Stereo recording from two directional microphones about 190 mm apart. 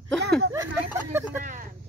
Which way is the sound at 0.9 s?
15° right (ahead or behind).